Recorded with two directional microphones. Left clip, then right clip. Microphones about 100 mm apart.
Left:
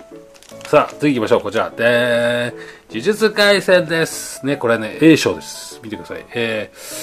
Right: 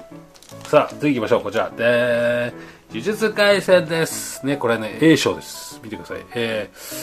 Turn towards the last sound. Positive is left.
turn(degrees=20)  # may be behind; listen again after turning